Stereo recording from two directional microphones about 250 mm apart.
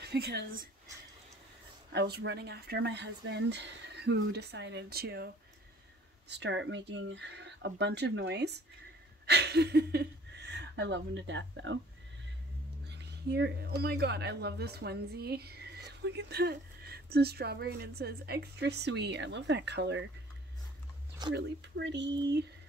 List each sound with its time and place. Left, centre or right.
0.0 s speech: right
1.9 s speech: right
12.8 s speech: right
21.3 s speech: right